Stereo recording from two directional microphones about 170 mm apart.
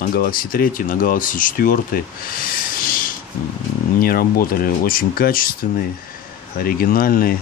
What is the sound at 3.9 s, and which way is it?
Speech, 60° left (ahead or behind).